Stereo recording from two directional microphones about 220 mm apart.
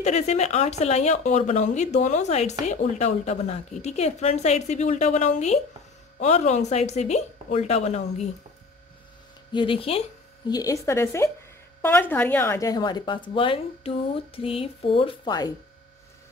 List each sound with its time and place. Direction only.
0.0 s a woman's voice: 30° left (ahead or behind)
9.5 s a woman's voice: 20° left (ahead or behind)
10.5 s a woman's voice: 15° left (ahead or behind)